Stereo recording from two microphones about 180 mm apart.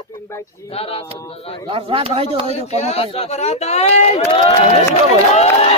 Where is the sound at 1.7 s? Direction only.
30° right (ahead or behind).